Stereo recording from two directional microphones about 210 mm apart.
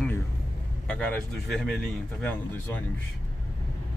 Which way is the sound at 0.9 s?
5° left (ahead or behind).